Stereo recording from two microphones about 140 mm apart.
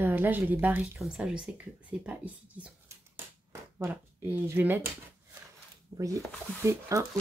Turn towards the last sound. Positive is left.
turn(degrees=-20)  # may be behind; listen again after turning